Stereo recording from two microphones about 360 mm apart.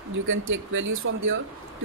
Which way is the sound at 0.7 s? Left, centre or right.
Right.